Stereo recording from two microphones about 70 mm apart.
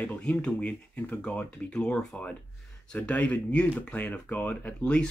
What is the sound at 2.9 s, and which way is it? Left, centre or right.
Speech, left.